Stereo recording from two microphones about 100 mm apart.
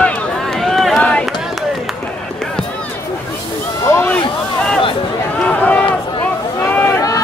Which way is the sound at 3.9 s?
25° left (ahead or behind).